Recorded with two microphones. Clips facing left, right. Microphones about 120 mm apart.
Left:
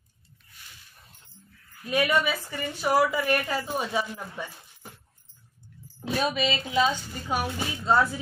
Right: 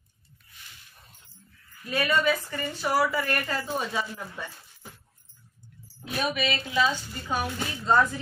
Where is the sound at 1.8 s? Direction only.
15° left (ahead or behind).